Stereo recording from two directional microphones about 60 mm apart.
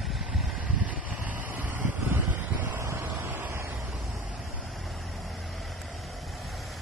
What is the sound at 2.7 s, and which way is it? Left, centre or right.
Wind, right.